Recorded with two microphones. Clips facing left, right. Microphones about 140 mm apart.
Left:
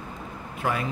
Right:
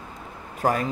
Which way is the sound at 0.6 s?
40° right (ahead or behind).